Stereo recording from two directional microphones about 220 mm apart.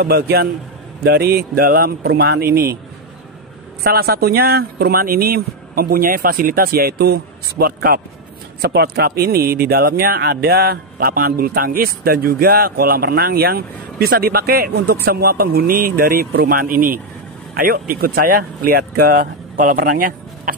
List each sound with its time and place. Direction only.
0.0 s speech: 45° right (ahead or behind)
3.8 s speech: 45° right (ahead or behind)